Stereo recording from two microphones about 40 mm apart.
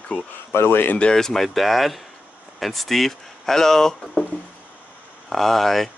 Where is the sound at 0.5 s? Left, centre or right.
Left.